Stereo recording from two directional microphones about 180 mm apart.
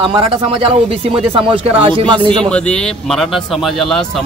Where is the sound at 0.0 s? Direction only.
30° right (ahead or behind).